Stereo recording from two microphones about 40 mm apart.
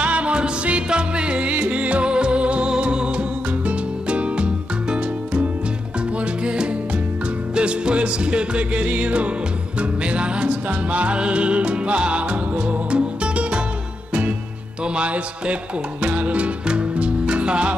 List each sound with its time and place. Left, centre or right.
0.0 s music: right
15.0 s music: right